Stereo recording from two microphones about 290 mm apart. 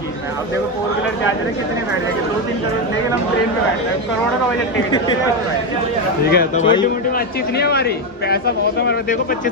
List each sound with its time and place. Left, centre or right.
6.2 s a man's voice: left